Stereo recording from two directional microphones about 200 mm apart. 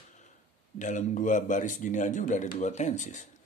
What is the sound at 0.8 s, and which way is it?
Speech, 40° left (ahead or behind).